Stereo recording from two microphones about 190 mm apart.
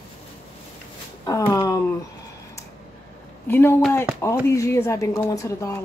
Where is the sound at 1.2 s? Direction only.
15° left (ahead or behind).